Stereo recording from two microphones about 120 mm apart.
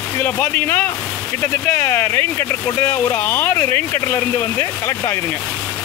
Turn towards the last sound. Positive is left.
turn(degrees=20)  # may be behind; listen again after turning